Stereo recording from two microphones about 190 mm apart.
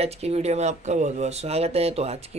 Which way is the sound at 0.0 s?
35° right (ahead or behind).